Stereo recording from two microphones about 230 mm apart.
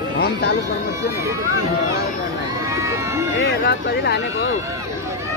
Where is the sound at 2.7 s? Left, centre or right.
Centre.